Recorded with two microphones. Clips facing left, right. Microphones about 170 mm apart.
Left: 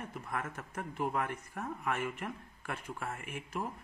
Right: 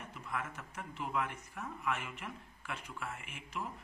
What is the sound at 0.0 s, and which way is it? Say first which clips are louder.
A man's voice: left 3 dB; 50° left (ahead or behind).